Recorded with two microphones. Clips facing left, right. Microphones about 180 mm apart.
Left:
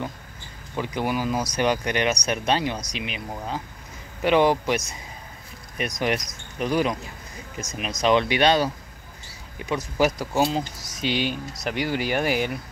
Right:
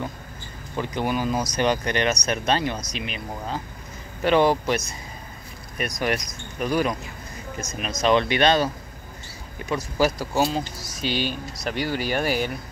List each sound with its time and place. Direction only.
0.7 s speech: 10° left (ahead or behind)